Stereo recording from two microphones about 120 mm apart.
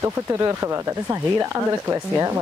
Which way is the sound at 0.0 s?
25° right (ahead or behind).